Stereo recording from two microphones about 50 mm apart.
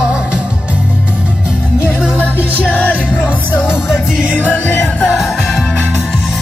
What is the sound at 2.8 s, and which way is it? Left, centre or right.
Music, left.